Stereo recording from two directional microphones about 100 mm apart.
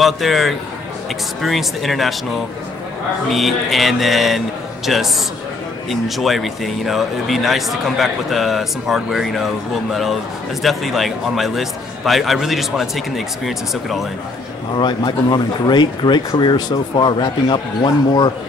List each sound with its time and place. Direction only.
0.0 s speech: centre (ahead or behind)
3.3 s speech: centre (ahead or behind)
10.6 s speech: centre (ahead or behind)
14.8 s speech: 50° left (ahead or behind)